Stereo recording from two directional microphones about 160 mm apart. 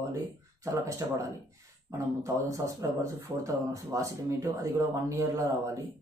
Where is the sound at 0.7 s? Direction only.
20° right (ahead or behind).